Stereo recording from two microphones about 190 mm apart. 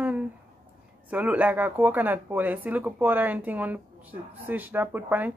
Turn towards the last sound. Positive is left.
turn(degrees=-10)  # may be behind; listen again after turning